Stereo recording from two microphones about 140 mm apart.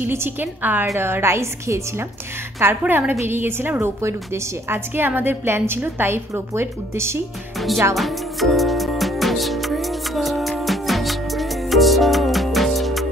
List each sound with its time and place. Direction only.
0.0 s a woman's voice: 15° right (ahead or behind)
7.5 s music: centre (ahead or behind)